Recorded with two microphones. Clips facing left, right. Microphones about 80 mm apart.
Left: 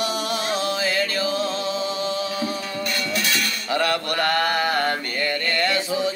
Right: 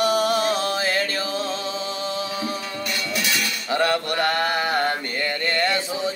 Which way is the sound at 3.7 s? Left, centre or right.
Right.